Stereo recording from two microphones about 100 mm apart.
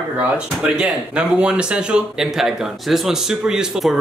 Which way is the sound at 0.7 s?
10° right (ahead or behind).